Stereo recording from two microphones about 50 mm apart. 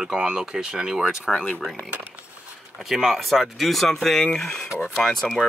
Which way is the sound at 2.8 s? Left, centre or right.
Centre.